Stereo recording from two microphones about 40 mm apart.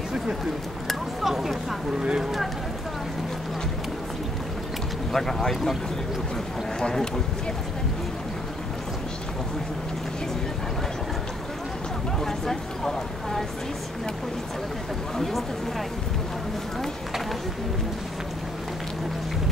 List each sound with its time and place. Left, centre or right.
0.8 s speech: centre
5.1 s speech: centre
6.8 s speech: left
12.2 s speech: centre